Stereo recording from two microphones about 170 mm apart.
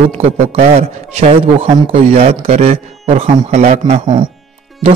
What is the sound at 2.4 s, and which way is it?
Speech, 50° right (ahead or behind).